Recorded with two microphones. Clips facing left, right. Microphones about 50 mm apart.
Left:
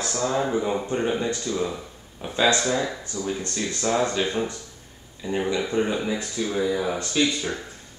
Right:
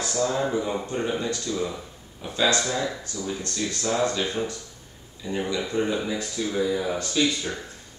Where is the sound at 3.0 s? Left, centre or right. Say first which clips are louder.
Left 2 dB; left.